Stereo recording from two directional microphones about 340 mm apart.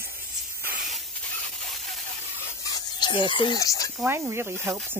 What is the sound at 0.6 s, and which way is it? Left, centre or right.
Hiss, right.